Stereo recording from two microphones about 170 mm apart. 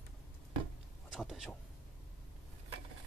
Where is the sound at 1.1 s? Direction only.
Centre (ahead or behind).